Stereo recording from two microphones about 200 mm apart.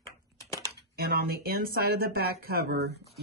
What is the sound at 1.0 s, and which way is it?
Speech, 50° right (ahead or behind).